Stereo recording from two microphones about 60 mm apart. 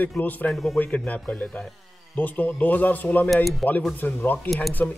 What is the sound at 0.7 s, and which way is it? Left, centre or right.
A man's voice, left.